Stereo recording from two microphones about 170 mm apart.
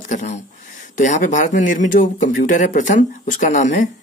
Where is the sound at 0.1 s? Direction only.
45° left (ahead or behind).